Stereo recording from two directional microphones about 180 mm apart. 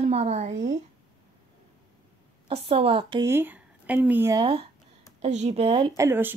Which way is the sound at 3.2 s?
10° right (ahead or behind).